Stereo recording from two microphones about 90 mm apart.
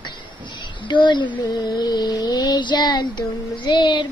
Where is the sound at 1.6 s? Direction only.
50° left (ahead or behind).